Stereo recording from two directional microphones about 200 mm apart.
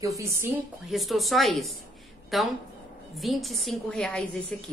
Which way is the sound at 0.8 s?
Centre (ahead or behind).